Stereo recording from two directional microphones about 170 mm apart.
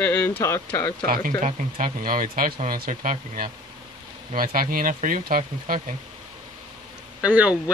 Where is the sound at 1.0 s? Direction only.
60° right (ahead or behind).